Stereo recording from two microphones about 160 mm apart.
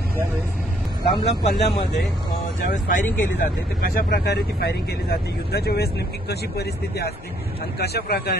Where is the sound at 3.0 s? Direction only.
10° left (ahead or behind).